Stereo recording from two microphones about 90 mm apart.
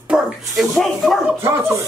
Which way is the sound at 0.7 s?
Centre (ahead or behind).